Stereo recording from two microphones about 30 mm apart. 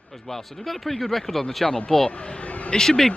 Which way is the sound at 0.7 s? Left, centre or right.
Centre.